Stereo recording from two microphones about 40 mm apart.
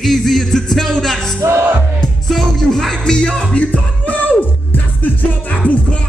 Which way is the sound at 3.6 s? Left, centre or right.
Left.